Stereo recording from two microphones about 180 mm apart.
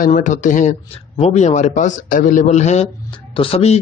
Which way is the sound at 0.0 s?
45° left (ahead or behind).